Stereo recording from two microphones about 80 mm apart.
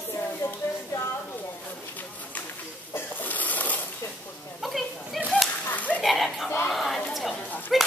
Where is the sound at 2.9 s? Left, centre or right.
Left.